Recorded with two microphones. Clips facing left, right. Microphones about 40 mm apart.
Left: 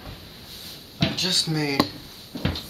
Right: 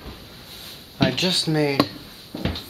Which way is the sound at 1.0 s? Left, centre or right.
Right.